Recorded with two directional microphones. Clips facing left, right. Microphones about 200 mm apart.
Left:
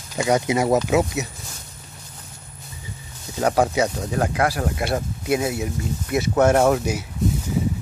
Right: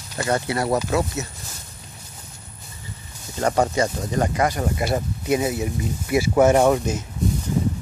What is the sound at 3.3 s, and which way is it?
Speech, 5° left (ahead or behind).